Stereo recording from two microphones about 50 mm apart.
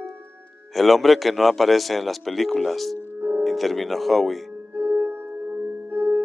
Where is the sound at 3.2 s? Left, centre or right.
Right.